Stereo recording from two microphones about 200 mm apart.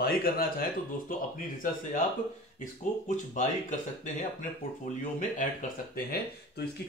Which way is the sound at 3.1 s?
40° left (ahead or behind).